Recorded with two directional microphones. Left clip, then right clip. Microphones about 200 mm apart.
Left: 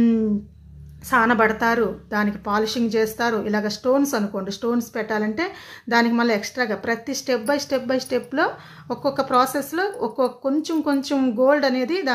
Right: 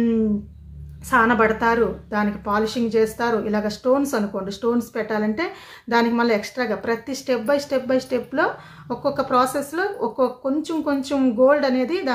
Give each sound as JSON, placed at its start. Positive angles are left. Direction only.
{"t": 1.1, "sound": "a woman's voice", "side_deg": 30}